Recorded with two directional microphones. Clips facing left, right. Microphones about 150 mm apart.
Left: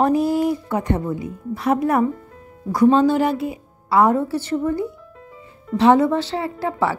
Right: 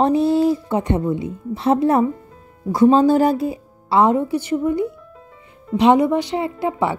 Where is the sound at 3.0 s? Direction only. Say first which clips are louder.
Right 3 dB; 40° right (ahead or behind).